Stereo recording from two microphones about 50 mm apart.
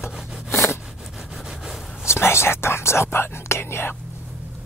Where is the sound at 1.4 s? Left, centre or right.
Centre.